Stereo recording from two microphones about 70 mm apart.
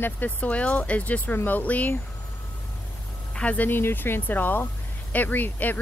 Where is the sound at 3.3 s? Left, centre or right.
Left.